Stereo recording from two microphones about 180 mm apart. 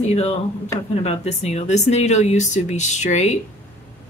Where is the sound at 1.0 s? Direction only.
35° left (ahead or behind).